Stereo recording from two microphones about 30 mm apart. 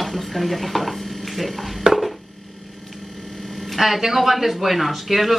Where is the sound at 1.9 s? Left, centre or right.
Centre.